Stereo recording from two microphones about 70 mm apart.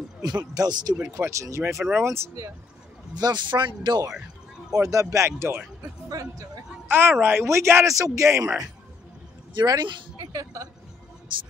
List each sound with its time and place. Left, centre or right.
0.2 s speech: right
1.1 s speech: right
3.2 s speech: right
4.7 s speech: right
6.0 s speech: right
6.9 s speech: right
7.9 s speech: right
9.6 s speech: right